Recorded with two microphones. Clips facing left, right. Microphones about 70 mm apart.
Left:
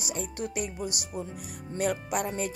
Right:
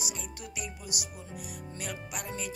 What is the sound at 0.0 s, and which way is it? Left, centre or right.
Speech, left.